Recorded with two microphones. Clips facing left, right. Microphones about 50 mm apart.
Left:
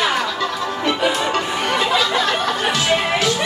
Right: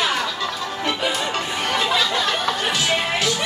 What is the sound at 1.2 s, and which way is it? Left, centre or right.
Music, centre.